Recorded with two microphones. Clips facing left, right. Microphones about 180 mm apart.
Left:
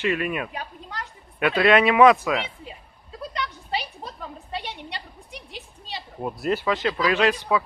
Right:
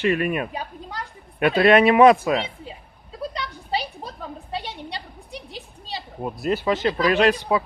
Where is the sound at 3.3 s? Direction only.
35° right (ahead or behind).